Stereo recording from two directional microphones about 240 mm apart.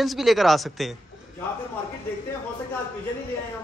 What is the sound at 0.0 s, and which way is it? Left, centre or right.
Speech, centre.